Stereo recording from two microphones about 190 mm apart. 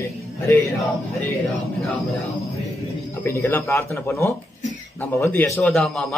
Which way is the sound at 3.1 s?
15° left (ahead or behind).